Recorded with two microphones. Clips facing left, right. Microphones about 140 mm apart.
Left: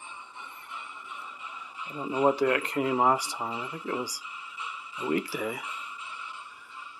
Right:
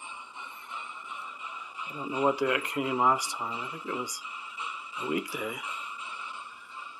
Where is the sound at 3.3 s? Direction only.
45° left (ahead or behind).